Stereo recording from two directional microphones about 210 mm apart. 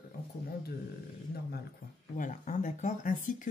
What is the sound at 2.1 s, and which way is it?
Speech, 35° left (ahead or behind).